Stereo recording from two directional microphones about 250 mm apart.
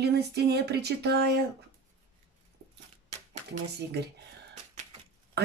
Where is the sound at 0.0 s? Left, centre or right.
Right.